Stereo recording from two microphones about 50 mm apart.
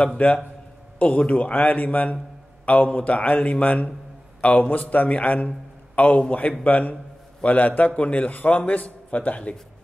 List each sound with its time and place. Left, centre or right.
0.2 s a man's voice: left